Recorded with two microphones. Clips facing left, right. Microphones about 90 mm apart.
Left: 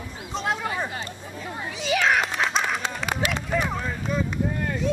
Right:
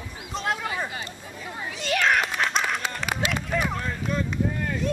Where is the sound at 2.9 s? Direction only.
Centre (ahead or behind).